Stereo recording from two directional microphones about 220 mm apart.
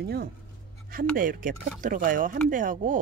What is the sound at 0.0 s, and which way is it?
Speech, 45° right (ahead or behind).